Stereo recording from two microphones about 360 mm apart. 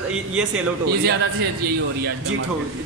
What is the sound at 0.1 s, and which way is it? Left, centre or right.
Speech, centre.